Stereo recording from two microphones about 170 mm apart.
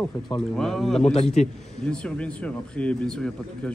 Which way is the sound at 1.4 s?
40° left (ahead or behind).